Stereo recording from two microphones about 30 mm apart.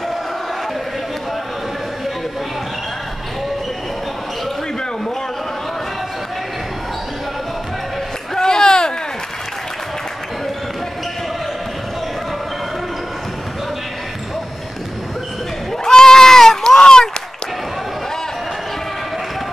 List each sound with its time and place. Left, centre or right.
8.4 s a sound: left
15.8 s goat: centre
16.6 s run: left